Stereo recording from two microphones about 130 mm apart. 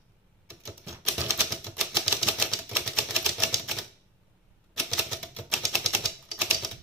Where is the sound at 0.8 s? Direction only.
25° right (ahead or behind).